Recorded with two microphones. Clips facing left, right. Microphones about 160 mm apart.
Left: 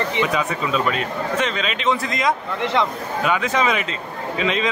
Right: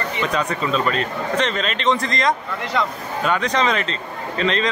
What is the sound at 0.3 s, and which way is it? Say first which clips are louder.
A man's voice: even; 5° left (ahead or behind).